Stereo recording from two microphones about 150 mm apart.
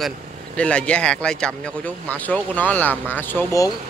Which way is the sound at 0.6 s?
10° left (ahead or behind).